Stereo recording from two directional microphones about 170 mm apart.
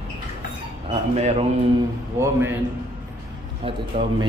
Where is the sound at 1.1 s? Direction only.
40° right (ahead or behind).